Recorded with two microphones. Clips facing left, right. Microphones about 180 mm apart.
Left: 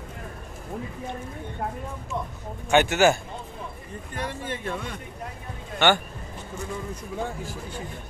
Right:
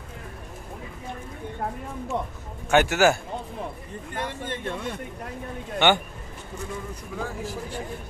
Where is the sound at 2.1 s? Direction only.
70° right (ahead or behind).